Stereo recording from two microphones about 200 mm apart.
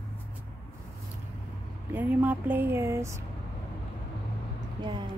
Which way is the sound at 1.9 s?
10° right (ahead or behind).